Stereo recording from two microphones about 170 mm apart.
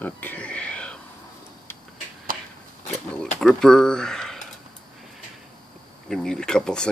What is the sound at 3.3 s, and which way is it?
Speech, 5° left (ahead or behind).